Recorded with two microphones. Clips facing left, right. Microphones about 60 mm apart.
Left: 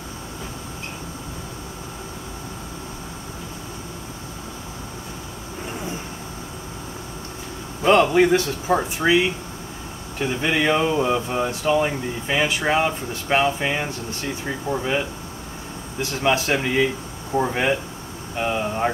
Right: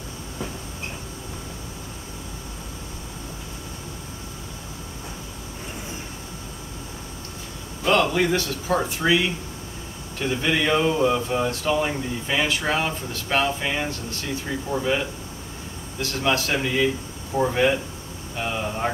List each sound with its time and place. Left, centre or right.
7.8 s a man's voice: left